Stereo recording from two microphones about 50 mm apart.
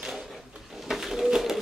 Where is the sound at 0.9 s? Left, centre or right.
Centre.